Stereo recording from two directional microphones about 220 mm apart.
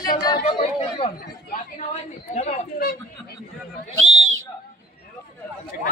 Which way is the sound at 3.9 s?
65° right (ahead or behind).